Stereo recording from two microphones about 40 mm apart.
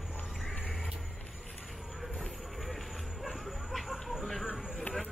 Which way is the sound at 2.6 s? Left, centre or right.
Centre.